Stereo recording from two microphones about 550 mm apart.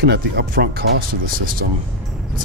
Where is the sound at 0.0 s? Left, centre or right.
Centre.